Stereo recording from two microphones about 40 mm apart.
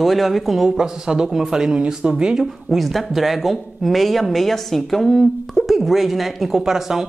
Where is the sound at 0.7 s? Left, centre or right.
Centre.